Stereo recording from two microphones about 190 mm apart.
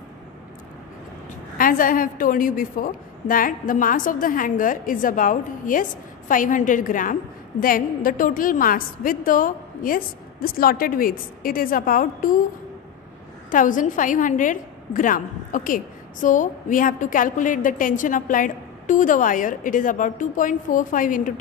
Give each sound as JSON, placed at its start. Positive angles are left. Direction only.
{"t": 1.6, "sound": "a woman's voice", "side_deg": 45}
{"t": 13.5, "sound": "a woman's voice", "side_deg": 45}